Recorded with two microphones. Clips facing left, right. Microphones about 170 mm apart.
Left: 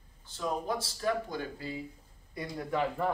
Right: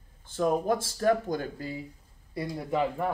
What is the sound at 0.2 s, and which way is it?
Speech, 50° right (ahead or behind).